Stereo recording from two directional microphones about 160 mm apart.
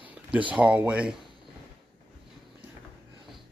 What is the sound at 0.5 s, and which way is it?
Speech, 10° right (ahead or behind).